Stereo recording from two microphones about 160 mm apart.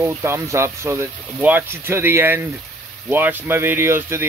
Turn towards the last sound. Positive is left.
turn(degrees=-15)  # may be behind; listen again after turning